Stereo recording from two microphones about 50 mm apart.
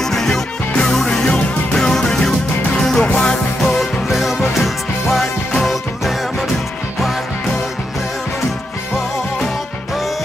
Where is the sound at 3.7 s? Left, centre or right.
Centre.